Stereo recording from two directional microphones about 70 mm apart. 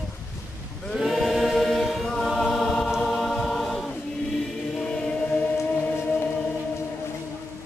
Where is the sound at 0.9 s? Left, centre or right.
Centre.